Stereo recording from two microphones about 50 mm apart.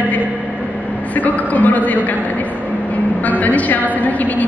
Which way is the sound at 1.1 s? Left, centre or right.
Left.